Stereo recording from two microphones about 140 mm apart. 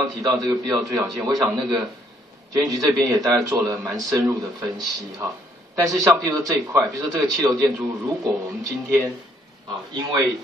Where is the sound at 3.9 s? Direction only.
30° right (ahead or behind).